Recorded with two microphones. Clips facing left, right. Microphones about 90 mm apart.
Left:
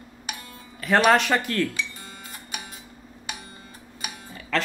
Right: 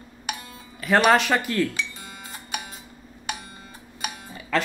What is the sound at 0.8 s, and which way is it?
Speech, 5° right (ahead or behind).